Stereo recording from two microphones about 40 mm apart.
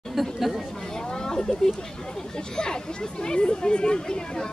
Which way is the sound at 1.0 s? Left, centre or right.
Centre.